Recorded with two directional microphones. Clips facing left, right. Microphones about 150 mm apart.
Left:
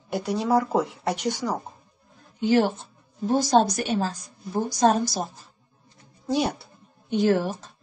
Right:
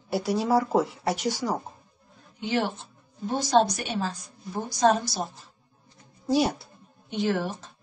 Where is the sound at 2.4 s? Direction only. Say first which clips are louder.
Left 6 dB; 40° left (ahead or behind).